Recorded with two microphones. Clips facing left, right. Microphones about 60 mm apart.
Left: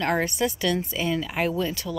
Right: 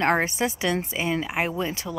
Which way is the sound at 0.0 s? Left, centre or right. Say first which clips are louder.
Right 2 dB; right.